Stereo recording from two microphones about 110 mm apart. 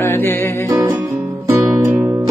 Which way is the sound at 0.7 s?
25° right (ahead or behind).